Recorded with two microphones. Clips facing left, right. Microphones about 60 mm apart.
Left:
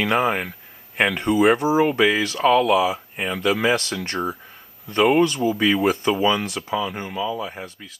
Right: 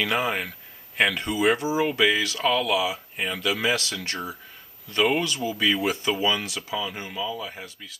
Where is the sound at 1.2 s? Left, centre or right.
Left.